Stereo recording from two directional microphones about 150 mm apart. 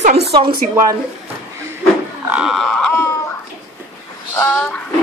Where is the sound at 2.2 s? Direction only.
5° right (ahead or behind).